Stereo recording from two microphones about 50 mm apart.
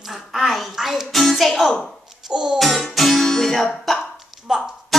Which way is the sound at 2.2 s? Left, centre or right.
Centre.